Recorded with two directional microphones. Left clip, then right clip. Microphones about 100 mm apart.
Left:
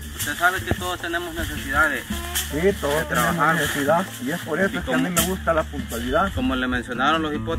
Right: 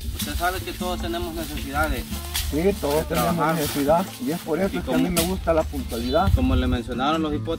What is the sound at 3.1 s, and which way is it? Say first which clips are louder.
Speech: left 2 dB; centre (ahead or behind).